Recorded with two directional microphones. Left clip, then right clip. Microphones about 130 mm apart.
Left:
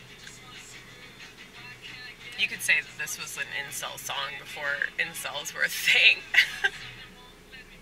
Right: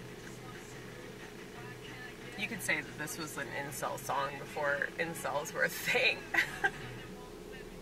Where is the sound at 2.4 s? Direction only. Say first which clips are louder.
Left 10 dB; 25° left (ahead or behind).